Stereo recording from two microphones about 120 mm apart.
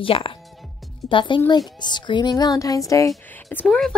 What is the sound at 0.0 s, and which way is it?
A woman's voice, 50° left (ahead or behind).